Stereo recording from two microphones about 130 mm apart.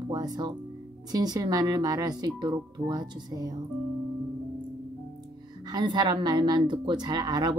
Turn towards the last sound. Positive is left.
turn(degrees=-35)  # may be behind; listen again after turning